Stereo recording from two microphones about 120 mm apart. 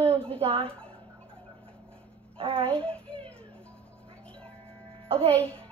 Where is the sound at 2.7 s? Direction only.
10° left (ahead or behind).